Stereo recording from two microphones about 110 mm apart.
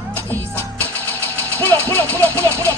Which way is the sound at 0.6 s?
15° left (ahead or behind).